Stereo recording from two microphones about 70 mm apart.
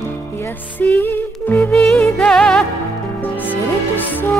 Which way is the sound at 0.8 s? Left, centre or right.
Left.